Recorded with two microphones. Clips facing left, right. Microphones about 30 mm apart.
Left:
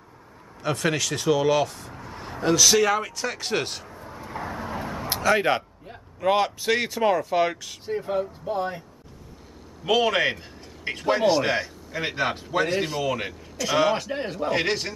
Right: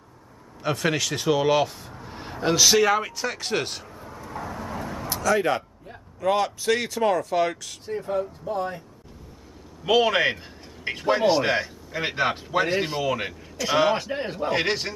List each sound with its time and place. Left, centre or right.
0.6 s a man's voice: centre
2.0 s a sound: centre
2.4 s speech: centre
4.1 s vehicle: centre
5.1 s speech: left
5.9 s speech: centre
9.8 s a man's voice: centre